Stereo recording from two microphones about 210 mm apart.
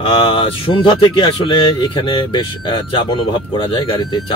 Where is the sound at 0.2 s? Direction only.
25° left (ahead or behind).